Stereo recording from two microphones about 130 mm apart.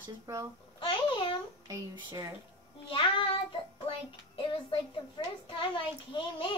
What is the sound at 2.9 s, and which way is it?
Child singing, 40° left (ahead or behind).